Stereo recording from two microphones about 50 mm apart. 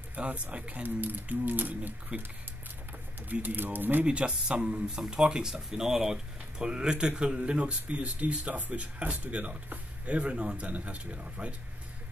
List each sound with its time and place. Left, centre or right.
0.1 s speech: right
0.8 s speech: right
2.1 s speech: right
3.4 s speech: right
4.0 s speech: right